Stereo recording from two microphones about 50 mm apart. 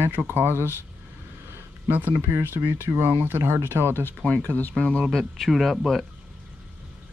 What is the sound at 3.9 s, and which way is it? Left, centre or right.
Speech, left.